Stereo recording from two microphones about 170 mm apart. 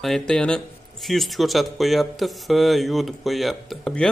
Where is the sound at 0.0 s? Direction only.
5° left (ahead or behind).